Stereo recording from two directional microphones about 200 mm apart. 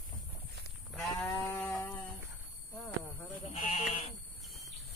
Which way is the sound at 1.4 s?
5° left (ahead or behind).